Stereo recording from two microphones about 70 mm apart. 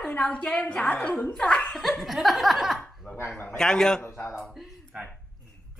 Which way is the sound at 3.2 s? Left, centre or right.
Left.